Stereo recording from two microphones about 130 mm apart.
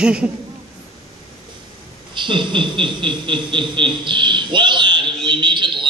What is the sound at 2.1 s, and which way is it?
A man's voice, 40° right (ahead or behind).